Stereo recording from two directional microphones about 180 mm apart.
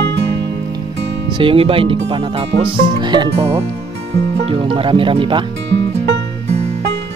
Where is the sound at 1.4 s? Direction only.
30° right (ahead or behind).